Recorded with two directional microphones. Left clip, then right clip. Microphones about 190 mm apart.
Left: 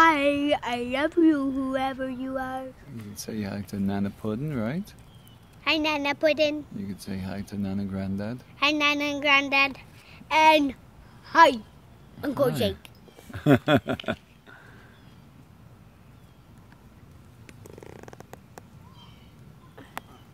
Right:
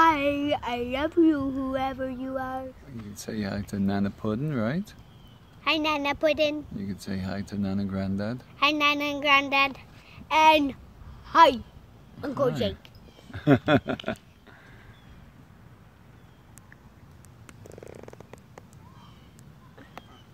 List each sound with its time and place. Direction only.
0.0 s a sound: 10° left (ahead or behind)
3.2 s speech: 20° right (ahead or behind)
5.6 s a woman's voice: centre (ahead or behind)
6.8 s speech: 15° right (ahead or behind)
8.5 s a child's voice: centre (ahead or behind)
12.2 s a woman's voice: 35° left (ahead or behind)
12.4 s speech: 55° left (ahead or behind)
13.3 s speech: 40° left (ahead or behind)
18.0 s purr: 40° left (ahead or behind)